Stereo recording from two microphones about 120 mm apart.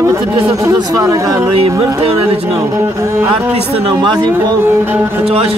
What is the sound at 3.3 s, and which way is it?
Speech, 50° right (ahead or behind).